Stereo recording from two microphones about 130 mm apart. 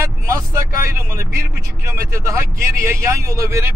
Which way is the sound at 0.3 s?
20° right (ahead or behind).